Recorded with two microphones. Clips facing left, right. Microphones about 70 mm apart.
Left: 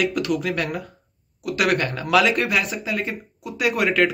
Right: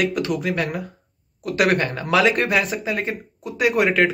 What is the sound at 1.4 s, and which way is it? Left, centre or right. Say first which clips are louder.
Speech: right 2 dB; right.